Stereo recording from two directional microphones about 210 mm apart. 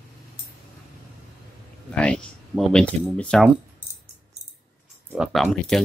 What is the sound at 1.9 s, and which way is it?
Speech, 5° left (ahead or behind).